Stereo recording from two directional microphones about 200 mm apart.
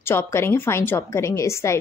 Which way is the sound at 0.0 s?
10° left (ahead or behind).